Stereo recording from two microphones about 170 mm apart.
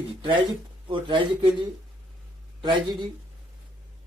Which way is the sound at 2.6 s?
25° right (ahead or behind).